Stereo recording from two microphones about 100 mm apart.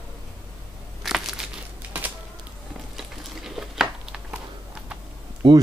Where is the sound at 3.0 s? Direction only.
5° right (ahead or behind).